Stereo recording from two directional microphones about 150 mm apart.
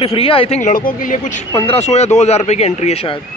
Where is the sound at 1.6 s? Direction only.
45° left (ahead or behind).